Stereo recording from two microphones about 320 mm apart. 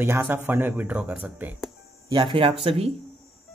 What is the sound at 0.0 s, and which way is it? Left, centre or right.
A man's voice, centre.